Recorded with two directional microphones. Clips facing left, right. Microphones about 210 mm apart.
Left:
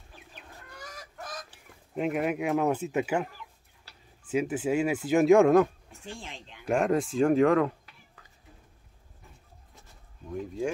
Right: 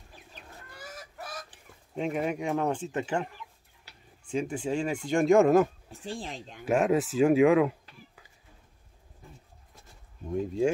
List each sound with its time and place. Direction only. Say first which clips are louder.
0.7 s chicken: right 1 dB; 5° right (ahead or behind)
2.0 s speech: left 2 dB; centre (ahead or behind)
4.3 s speech: left 3 dB; 5° left (ahead or behind)
5.9 s speech: right 5 dB; 35° right (ahead or behind)
6.6 s speech: right 1 dB; centre (ahead or behind)
10.3 s speech: right 5 dB; 25° right (ahead or behind)